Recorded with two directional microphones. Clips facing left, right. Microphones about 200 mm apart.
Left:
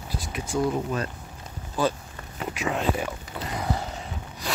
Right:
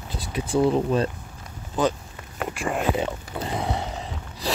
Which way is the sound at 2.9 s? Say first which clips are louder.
Right 4 dB; 25° right (ahead or behind).